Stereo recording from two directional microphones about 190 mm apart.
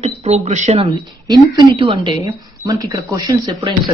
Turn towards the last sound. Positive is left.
turn(degrees=-20)  # may be behind; listen again after turning